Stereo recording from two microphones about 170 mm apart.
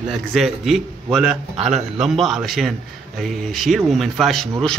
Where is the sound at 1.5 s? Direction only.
40° right (ahead or behind).